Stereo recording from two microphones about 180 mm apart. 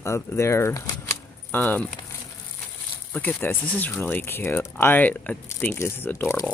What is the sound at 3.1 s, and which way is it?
Speech, 10° left (ahead or behind).